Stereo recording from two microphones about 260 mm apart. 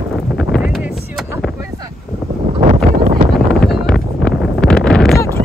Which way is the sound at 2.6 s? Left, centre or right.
Right.